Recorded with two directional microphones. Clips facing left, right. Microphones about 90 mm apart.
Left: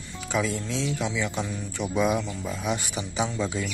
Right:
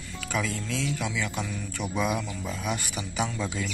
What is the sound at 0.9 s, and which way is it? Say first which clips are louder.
Speech: left 3 dB; centre (ahead or behind).